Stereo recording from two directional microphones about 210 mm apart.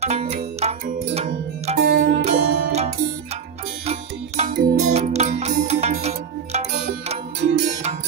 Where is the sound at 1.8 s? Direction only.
50° right (ahead or behind).